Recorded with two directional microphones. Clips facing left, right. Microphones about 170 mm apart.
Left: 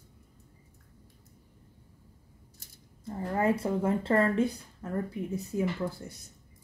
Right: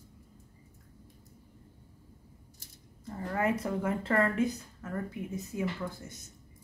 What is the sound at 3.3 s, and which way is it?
Speech, 30° left (ahead or behind).